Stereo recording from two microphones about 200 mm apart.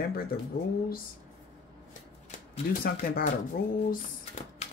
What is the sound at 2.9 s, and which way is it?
Speech, 45° left (ahead or behind).